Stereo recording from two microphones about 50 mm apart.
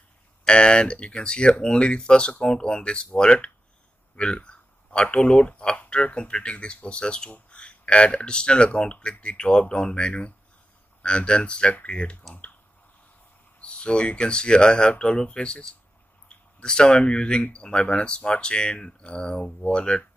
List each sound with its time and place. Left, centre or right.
0.5 s speech: centre
13.6 s speech: left